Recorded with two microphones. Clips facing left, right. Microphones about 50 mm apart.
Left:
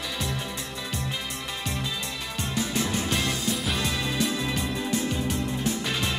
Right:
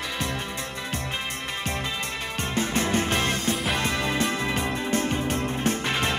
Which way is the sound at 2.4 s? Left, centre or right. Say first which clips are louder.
Right 2 dB; right.